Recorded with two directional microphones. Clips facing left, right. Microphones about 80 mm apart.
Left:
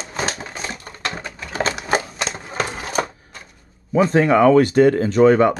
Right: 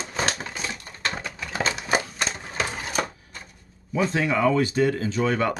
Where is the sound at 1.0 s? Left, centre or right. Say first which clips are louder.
Left 2 dB; left.